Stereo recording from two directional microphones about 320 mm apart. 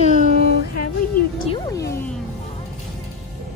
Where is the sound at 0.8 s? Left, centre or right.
Left.